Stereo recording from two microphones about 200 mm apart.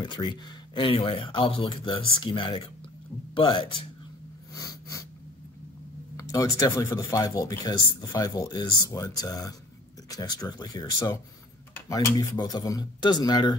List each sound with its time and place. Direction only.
0.0 s speech: 20° left (ahead or behind)
4.6 s snort: 15° left (ahead or behind)
6.1 s speech: 15° left (ahead or behind)